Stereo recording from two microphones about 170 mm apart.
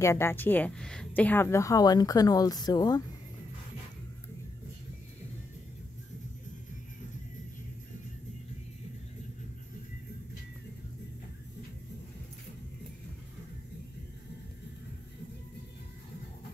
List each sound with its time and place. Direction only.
0.0 s a woman's voice: 15° left (ahead or behind)